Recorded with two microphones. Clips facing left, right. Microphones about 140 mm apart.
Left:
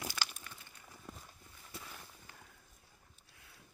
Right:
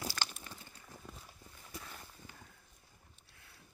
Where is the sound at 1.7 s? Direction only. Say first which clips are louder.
Right 1 dB; 5° left (ahead or behind).